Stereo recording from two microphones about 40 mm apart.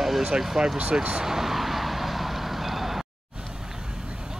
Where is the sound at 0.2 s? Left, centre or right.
Centre.